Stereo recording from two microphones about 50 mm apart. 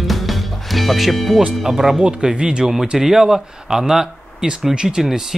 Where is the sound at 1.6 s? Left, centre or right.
Centre.